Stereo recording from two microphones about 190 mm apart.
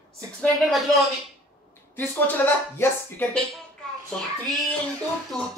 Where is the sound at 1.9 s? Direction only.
10° left (ahead or behind).